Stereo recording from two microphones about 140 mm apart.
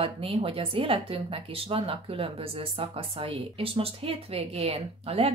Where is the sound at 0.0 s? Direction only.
40° right (ahead or behind).